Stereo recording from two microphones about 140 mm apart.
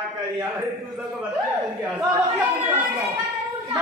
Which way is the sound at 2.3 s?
10° right (ahead or behind).